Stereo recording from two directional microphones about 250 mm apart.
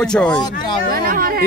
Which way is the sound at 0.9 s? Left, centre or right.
Right.